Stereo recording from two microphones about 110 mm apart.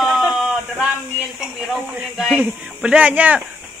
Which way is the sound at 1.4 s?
Centre (ahead or behind).